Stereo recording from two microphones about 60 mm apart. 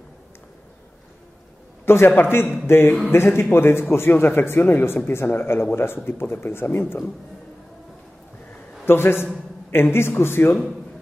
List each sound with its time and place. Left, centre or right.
1.9 s speech: left
8.8 s speech: left